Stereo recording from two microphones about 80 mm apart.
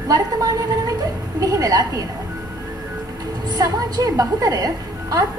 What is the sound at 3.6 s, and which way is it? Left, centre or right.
A woman's voice, right.